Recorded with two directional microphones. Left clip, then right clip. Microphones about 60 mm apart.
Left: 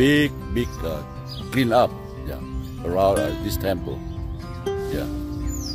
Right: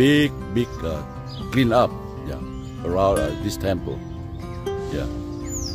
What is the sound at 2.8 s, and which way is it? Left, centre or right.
Music, centre.